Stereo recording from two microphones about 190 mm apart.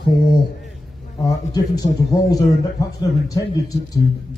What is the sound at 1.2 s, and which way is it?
A man's voice, 20° left (ahead or behind).